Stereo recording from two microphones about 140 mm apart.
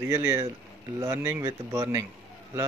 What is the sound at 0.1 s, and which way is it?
Speech, 20° right (ahead or behind).